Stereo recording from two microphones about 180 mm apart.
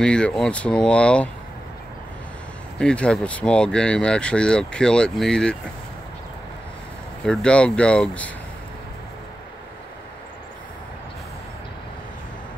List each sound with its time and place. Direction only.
0.0 s speech: 5° left (ahead or behind)
2.8 s speech: 5° left (ahead or behind)
7.2 s speech: 5° left (ahead or behind)